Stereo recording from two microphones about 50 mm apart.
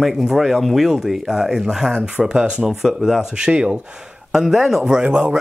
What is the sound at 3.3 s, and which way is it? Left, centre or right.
Speech, centre.